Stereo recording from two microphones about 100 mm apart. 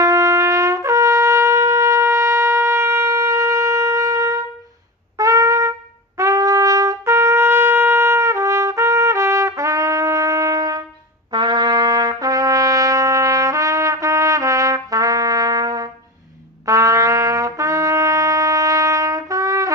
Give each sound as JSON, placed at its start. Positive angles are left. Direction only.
{"t": 0.0, "sound": "trumpet", "side_deg": -30}
{"t": 11.3, "sound": "trumpet", "side_deg": -50}